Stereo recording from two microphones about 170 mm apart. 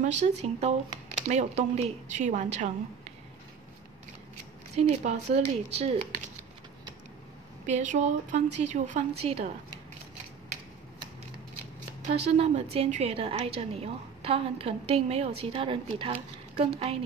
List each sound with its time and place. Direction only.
0.0 s a woman's voice: 40° right (ahead or behind)
4.7 s a woman's voice: 40° right (ahead or behind)
7.6 s a woman's voice: 45° right (ahead or behind)
12.3 s a woman's voice: 35° right (ahead or behind)